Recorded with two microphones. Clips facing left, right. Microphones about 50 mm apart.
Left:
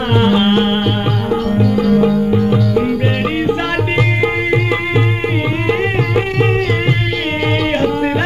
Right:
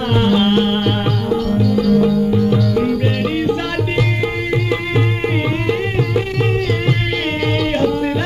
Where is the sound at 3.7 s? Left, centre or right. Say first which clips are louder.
Left 3 dB; left.